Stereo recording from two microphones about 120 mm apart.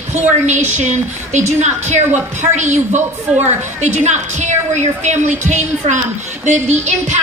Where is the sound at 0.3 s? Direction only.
80° right.